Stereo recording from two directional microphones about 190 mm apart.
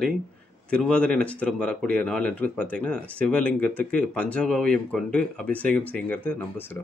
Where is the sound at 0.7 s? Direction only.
5° left (ahead or behind).